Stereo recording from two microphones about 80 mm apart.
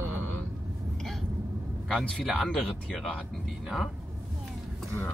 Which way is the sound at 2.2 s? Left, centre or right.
Centre.